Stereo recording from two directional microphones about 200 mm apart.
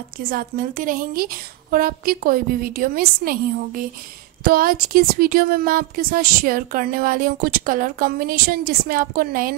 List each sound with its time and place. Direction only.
0.2 s speech: 45° right (ahead or behind)